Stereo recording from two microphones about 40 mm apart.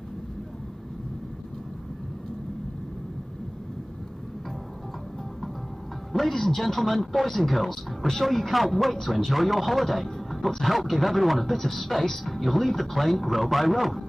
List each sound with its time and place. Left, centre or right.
6.1 s speech: centre